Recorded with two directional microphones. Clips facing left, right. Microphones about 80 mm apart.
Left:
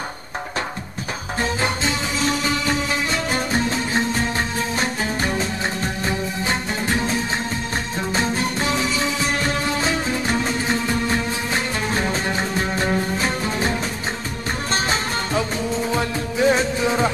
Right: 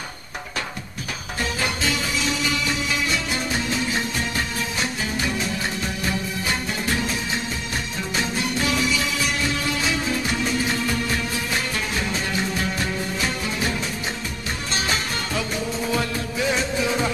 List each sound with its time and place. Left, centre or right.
1.4 s music: left
8.1 s music: left